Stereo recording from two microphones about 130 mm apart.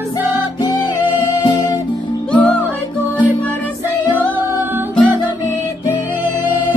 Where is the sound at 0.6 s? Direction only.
30° left (ahead or behind).